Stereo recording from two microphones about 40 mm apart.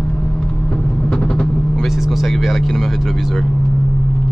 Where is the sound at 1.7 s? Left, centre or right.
Centre.